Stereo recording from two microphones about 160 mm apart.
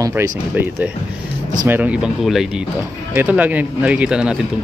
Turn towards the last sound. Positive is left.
turn(degrees=-5)  # may be behind; listen again after turning